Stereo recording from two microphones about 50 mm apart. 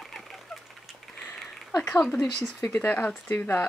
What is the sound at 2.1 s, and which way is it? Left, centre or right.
Speech, centre.